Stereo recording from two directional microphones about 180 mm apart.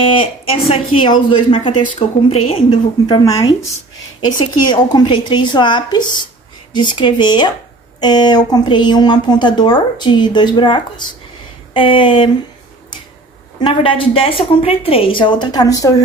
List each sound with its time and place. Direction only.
0.2 s a woman's voice: 30° left (ahead or behind)
4.3 s a woman's voice: 25° left (ahead or behind)
13.6 s a woman's voice: 30° left (ahead or behind)